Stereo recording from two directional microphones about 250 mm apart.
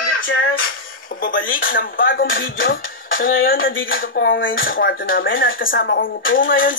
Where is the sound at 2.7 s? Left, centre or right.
Left.